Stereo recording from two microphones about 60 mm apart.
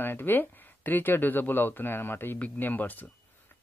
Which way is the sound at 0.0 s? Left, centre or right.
Left.